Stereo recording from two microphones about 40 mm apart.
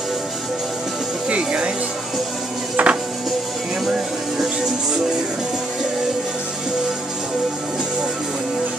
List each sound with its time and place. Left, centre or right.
1.3 s speech: right
2.8 s music: right